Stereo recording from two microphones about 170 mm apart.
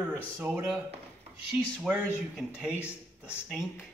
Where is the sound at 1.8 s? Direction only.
5° right (ahead or behind).